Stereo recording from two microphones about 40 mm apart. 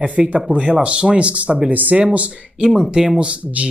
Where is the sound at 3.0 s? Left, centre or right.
Right.